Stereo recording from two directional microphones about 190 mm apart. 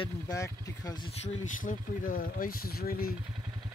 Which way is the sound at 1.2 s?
45° left (ahead or behind).